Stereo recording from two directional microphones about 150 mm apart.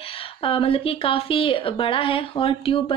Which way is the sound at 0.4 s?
40° left (ahead or behind).